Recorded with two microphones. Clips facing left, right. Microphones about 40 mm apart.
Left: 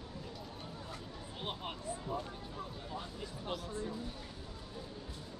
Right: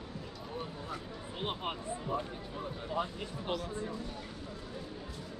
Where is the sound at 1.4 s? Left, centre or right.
Right.